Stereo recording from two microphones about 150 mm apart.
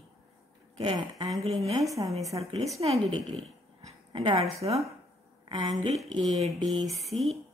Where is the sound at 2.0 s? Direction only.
30° right (ahead or behind).